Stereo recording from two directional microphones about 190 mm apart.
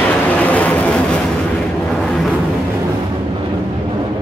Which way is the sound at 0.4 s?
10° left (ahead or behind).